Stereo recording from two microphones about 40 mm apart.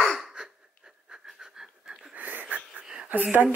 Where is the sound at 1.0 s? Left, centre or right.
Centre.